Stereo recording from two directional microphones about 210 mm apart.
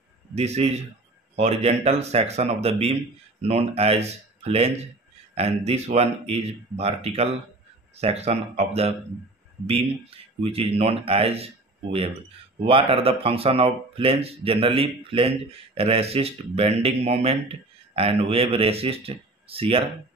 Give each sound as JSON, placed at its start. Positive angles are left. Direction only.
{"t": 0.3, "sound": "speech", "side_deg": -30}